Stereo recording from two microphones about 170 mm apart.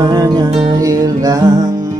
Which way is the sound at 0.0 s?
20° right (ahead or behind).